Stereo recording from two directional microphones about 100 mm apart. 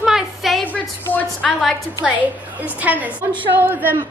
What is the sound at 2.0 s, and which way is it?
A woman's voice, 15° right (ahead or behind).